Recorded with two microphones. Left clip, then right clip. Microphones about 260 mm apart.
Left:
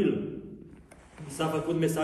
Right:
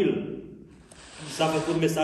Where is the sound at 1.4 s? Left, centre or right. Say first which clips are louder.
Right 4 dB; centre.